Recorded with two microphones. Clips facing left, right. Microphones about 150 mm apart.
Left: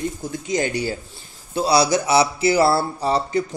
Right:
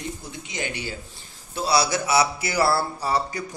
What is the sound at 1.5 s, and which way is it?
Speech, 30° left (ahead or behind).